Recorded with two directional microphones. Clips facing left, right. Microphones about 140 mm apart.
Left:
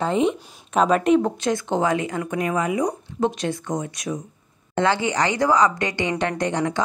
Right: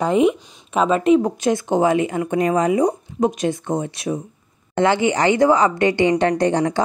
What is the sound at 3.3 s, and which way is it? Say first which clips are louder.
A woman's voice: right 4 dB; 20° right (ahead or behind).